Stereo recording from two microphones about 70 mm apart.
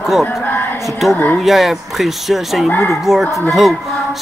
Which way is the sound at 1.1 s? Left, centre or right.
Left.